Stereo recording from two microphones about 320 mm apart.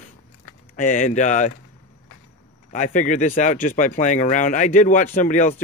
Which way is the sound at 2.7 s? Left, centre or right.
Left.